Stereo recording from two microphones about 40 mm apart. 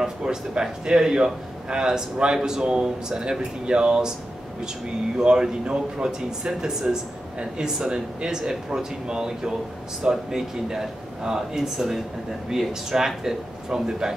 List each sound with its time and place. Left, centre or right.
0.0 s speech: centre
5.1 s speech: centre